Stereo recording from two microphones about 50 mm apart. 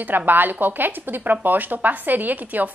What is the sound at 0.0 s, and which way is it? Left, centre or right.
A woman's voice, right.